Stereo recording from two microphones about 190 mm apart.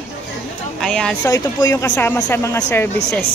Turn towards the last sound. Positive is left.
turn(degrees=5)  # may be behind; listen again after turning